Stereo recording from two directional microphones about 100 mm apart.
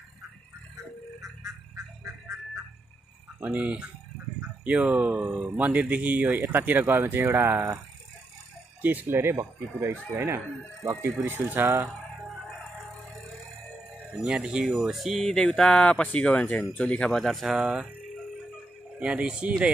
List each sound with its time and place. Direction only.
3.3 s speech: 15° right (ahead or behind)
8.8 s speech: 20° right (ahead or behind)
12.3 s music: centre (ahead or behind)
14.1 s speech: 10° right (ahead or behind)
18.9 s speech: 15° right (ahead or behind)